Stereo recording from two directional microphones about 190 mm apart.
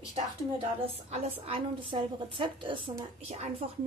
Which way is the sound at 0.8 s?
35° right (ahead or behind).